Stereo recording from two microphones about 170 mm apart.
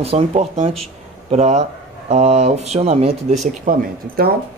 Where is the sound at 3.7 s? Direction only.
55° right (ahead or behind).